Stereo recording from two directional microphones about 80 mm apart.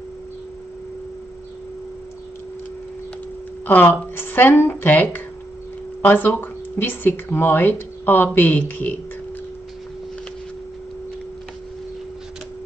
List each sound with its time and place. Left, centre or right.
3.6 s speech: left